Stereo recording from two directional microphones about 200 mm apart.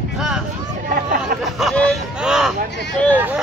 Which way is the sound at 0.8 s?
45° right (ahead or behind).